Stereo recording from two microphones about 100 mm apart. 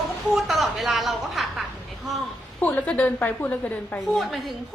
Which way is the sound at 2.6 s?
15° left (ahead or behind).